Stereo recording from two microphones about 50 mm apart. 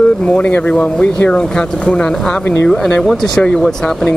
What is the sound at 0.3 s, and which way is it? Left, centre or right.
Speech, left.